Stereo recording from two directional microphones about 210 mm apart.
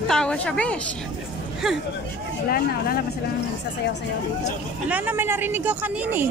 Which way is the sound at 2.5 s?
45° left (ahead or behind).